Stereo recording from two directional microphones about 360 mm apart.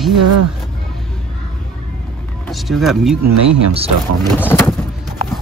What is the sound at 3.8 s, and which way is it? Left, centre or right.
Speech, centre.